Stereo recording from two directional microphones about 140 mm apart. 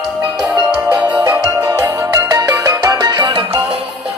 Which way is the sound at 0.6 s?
10° right (ahead or behind).